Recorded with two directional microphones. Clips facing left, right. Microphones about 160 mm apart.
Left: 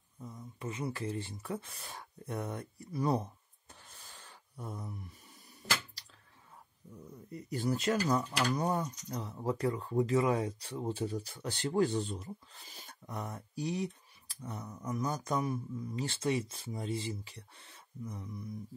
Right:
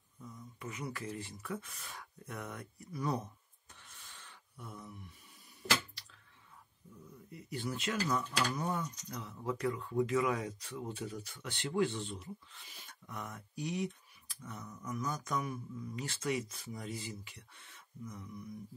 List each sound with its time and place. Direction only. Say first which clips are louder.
0.2 s speech: left 4 dB; 30° left (ahead or behind)
7.2 s speech: left 6 dB; 40° left (ahead or behind)